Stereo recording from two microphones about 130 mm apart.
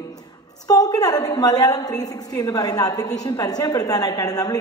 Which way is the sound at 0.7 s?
30° left (ahead or behind).